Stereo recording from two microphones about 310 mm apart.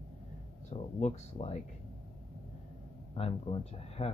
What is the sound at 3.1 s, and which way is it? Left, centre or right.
Speech, centre.